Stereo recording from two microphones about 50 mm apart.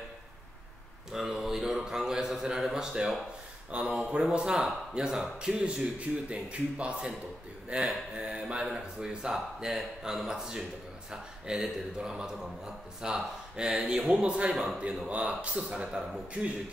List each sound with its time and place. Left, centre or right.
1.1 s speech: centre
3.7 s speech: right
5.4 s speech: right
8.2 s speech: right